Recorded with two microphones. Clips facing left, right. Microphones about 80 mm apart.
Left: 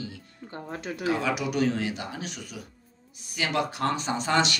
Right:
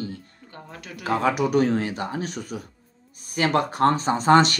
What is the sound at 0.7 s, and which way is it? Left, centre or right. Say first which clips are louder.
Speech: left 6 dB; left.